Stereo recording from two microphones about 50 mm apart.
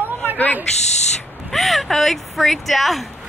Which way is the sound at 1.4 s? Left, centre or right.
Centre.